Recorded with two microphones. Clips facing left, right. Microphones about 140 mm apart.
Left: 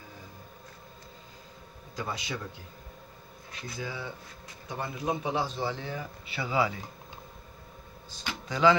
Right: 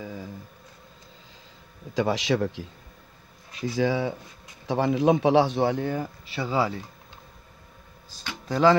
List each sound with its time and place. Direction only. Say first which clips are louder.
0.0 s a sound: right 12 dB; 90° right
2.0 s a man's voice: right 12 dB; 90° right; by 6.0 s 50° right (ahead or behind)
6.3 s speech: right 3 dB; 35° right (ahead or behind)
8.5 s speech: right 4 dB; 40° right (ahead or behind)